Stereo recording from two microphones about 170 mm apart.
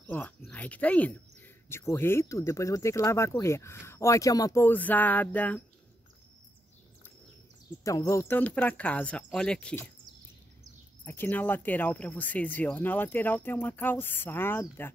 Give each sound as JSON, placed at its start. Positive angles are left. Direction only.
{"t": 0.0, "sound": "speech", "side_deg": 10}
{"t": 7.8, "sound": "speech", "side_deg": 20}
{"t": 11.1, "sound": "speech", "side_deg": 10}